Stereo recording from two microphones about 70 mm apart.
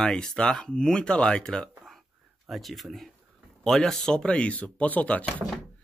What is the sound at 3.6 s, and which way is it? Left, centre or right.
Speech, centre.